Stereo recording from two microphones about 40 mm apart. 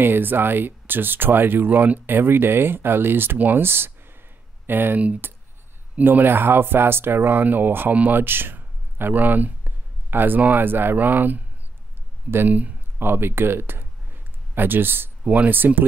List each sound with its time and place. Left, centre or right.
0.0 s speech: right
3.3 s speech: right
3.6 s a sound: right
4.6 s speech: right
4.9 s speech: right
6.0 s speech: right
8.5 s a sound: right
9.1 s a sound: right
10.4 s speech: right
12.4 s speech: right
13.0 s speech: right
15.2 s speech: right
15.5 s speech: right